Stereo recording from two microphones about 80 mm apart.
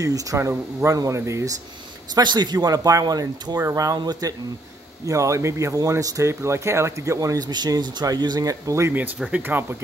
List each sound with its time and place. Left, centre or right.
0.0 s speech: right
2.1 s speech: right
5.0 s speech: right
9.3 s speech: right